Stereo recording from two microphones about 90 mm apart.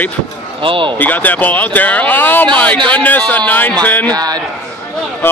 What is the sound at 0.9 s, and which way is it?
Speech, 20° left (ahead or behind).